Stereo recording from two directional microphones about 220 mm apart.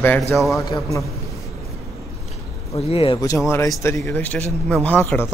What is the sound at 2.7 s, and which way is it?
Speech, 25° left (ahead or behind).